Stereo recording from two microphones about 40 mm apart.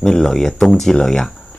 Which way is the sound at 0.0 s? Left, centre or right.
Centre.